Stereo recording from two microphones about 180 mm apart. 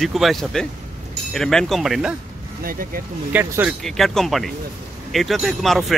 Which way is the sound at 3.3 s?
10° right (ahead or behind).